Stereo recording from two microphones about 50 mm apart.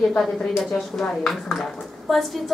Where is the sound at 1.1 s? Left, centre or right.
Centre.